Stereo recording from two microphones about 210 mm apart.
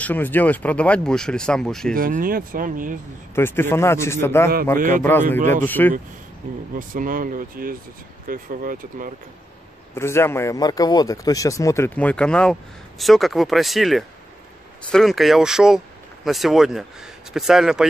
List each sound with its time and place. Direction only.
0.0 s speech: 10° left (ahead or behind)
2.0 s speech: 40° right (ahead or behind)
3.3 s a man's voice: 10° left (ahead or behind)
4.7 s speech: 40° right (ahead or behind)
5.7 s a man's voice: 10° left (ahead or behind)
6.7 s speech: 40° right (ahead or behind)
9.9 s a man's voice: 10° left (ahead or behind)